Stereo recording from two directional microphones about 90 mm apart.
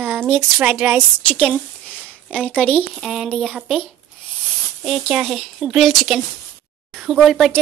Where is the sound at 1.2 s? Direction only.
15° left (ahead or behind).